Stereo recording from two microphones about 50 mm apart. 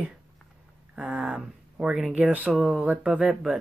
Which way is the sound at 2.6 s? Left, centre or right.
Centre.